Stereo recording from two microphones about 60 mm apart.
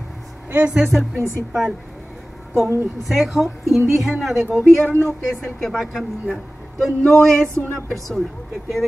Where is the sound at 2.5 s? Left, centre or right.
Right.